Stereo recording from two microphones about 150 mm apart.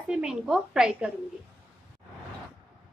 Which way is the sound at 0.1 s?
5° right (ahead or behind).